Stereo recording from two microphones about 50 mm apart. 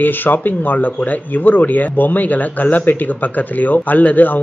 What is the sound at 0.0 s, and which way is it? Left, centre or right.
Speech, left.